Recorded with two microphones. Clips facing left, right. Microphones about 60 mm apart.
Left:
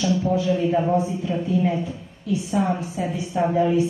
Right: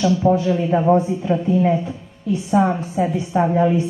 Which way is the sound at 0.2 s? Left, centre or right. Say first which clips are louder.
Right 9 dB; right.